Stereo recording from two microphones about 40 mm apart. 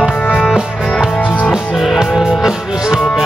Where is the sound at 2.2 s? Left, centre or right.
Centre.